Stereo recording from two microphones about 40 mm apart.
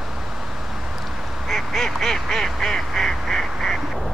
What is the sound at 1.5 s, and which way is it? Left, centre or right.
Duck, centre.